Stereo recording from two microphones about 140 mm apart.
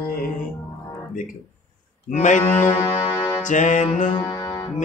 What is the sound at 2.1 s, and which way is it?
Music, 65° left (ahead or behind).